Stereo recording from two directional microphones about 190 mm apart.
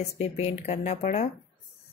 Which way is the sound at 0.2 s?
35° left (ahead or behind).